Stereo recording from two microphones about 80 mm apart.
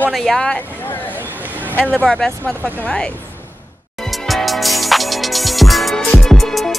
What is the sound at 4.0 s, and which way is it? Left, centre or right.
Music, centre.